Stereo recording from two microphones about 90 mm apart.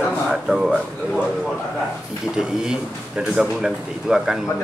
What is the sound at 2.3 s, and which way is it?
Speech, 25° left (ahead or behind).